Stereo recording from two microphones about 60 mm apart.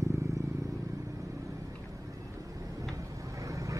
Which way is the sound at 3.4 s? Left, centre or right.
Right.